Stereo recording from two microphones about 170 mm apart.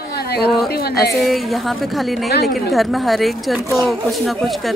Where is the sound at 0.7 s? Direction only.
65° left (ahead or behind).